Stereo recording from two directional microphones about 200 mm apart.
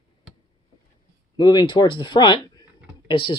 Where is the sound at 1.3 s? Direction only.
20° left (ahead or behind).